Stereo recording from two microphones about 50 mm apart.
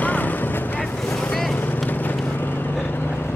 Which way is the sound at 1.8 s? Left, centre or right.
Left.